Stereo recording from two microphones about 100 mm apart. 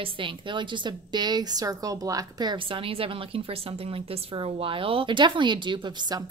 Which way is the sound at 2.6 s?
65° right (ahead or behind).